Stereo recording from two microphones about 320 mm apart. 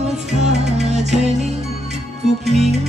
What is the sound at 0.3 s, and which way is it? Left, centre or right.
Music, right.